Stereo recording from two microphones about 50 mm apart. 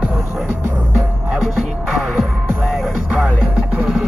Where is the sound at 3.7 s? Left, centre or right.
Centre.